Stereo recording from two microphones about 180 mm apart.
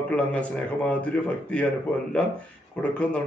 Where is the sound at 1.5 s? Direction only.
5° left (ahead or behind).